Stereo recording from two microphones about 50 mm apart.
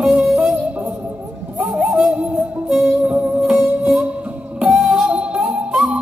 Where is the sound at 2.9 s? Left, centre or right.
Right.